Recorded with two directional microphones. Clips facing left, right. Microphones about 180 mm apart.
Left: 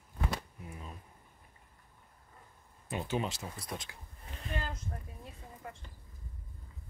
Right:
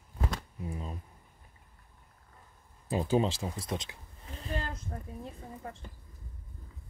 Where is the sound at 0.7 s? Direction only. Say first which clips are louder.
Right 6 dB; 30° right (ahead or behind).